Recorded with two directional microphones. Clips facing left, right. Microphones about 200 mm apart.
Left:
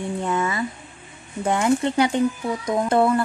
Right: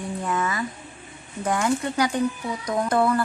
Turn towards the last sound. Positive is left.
turn(degrees=25)  # may be behind; listen again after turning